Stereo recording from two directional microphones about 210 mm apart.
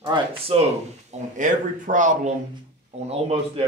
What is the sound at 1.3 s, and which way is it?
A man's voice, 35° right (ahead or behind).